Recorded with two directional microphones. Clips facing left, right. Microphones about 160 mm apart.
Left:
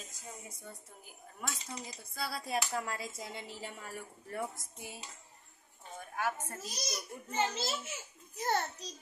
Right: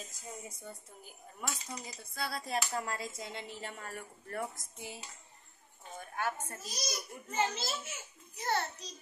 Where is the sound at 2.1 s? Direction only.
5° left (ahead or behind).